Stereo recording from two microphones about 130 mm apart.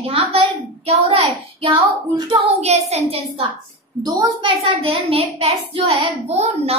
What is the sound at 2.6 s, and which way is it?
Speech, 55° right (ahead or behind).